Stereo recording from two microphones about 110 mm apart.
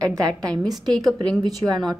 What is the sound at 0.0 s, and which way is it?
A woman's voice, 35° right (ahead or behind).